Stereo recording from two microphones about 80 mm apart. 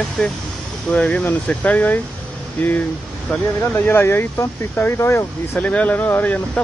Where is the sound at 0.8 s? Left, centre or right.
Centre.